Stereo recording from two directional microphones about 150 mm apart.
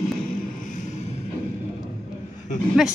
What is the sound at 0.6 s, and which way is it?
Music, 55° left (ahead or behind).